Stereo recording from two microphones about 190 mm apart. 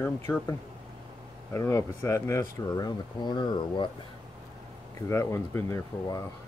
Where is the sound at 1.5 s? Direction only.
15° left (ahead or behind).